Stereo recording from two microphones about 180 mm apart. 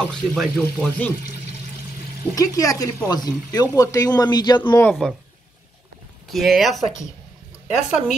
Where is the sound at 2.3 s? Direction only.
20° left (ahead or behind).